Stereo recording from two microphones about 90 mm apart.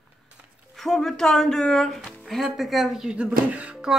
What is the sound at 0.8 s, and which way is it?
A woman's voice, 5° left (ahead or behind).